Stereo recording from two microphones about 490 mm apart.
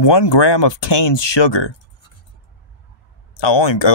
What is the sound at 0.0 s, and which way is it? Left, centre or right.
Speech, left.